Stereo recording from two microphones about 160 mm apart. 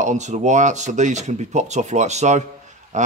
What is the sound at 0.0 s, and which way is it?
Speech, 50° right (ahead or behind).